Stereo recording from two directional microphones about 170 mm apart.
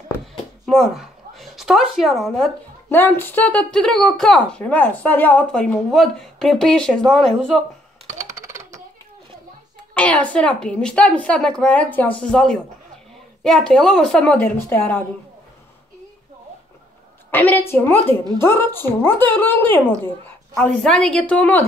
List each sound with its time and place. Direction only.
0.7 s a woman's voice: centre (ahead or behind)
2.9 s a woman's voice: 10° left (ahead or behind)
8.4 s a sound: 15° right (ahead or behind)
9.9 s a woman's voice: 10° left (ahead or behind)
17.3 s a woman's voice: 10° left (ahead or behind)